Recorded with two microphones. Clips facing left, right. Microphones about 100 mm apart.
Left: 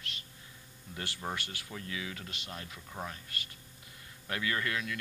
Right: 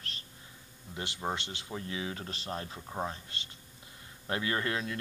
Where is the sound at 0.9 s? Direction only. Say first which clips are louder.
Right 3 dB; 20° right (ahead or behind).